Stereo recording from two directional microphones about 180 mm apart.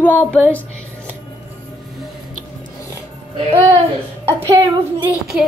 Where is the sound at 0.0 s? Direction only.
10° left (ahead or behind).